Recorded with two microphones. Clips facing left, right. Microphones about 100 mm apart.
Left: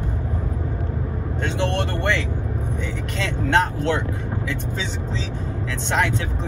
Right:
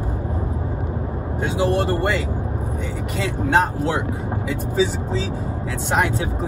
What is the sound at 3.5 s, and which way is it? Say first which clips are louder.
Speech: right 1 dB; 5° right (ahead or behind).